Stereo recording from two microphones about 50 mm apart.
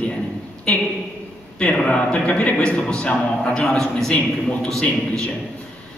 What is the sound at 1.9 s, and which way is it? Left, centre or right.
A man's voice, left.